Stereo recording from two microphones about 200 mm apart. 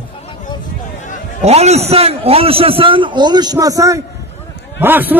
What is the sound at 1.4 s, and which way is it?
A man's voice, 35° right (ahead or behind).